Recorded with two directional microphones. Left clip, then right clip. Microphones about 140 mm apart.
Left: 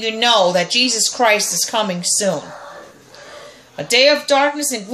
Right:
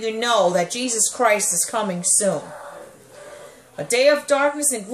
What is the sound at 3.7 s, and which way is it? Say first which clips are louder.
Speech: left 4 dB; 15° left (ahead or behind).